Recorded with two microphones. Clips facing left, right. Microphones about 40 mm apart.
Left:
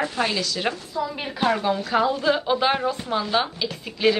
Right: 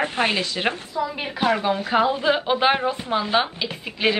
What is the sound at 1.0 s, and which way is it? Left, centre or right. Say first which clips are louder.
A woman's voice: right 1 dB; centre.